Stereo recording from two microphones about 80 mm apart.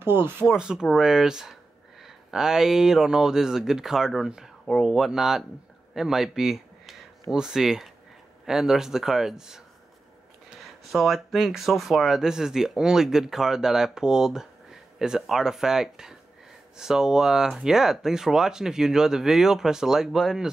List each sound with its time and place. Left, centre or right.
0.0 s speech: right
0.5 s speech: centre
10.6 s speech: centre